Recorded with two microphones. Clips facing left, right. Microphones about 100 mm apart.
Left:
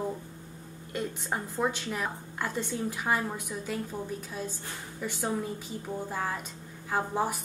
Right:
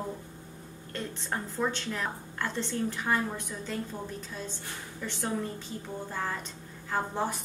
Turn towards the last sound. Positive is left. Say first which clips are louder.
# left 2 dB
turn(degrees=10)  # may be behind; listen again after turning